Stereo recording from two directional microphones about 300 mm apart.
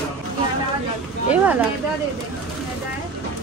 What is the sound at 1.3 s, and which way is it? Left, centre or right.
Speech, centre.